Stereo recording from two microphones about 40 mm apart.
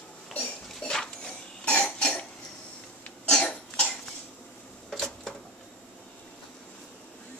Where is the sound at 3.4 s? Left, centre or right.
Left.